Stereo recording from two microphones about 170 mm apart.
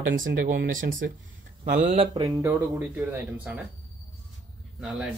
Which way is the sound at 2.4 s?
15° right (ahead or behind).